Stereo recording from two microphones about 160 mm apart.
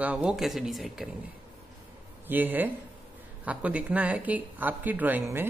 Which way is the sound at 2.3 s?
10° right (ahead or behind).